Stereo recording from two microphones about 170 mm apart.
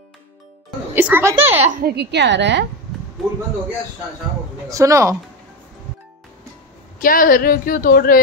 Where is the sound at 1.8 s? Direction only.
70° right (ahead or behind); by 2.6 s 90° right.